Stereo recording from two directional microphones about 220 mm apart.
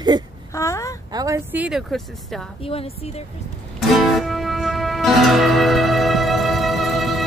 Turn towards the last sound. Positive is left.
turn(degrees=0)  # may be behind; listen again after turning